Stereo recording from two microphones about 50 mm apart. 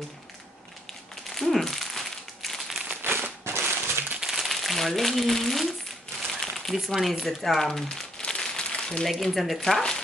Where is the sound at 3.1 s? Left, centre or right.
Right.